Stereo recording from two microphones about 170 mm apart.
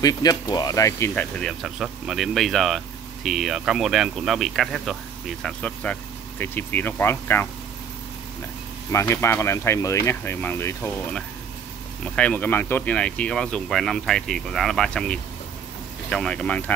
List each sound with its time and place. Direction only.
0.0 s speech: 25° left (ahead or behind)
1.4 s speech: centre (ahead or behind)
8.9 s speech: 15° left (ahead or behind)